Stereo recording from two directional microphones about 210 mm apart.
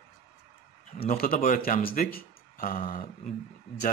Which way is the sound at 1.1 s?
45° left (ahead or behind).